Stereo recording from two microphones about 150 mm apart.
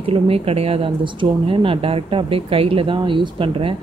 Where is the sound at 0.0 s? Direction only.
40° right (ahead or behind).